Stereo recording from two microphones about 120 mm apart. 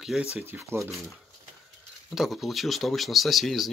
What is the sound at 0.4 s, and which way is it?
Speech, 20° right (ahead or behind).